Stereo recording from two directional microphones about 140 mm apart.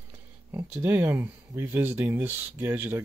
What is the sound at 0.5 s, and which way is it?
Speech, 15° right (ahead or behind).